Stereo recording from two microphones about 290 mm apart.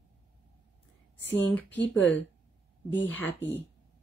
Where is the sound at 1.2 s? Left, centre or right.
Centre.